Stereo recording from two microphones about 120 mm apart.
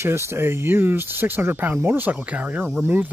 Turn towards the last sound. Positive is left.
turn(degrees=-15)  # may be behind; listen again after turning